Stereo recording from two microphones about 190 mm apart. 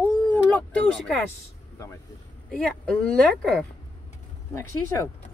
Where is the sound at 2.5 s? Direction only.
5° left (ahead or behind).